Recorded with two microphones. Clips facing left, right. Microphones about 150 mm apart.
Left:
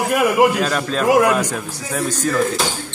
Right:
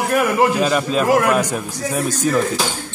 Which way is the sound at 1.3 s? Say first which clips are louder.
Right 1 dB; 10° right (ahead or behind).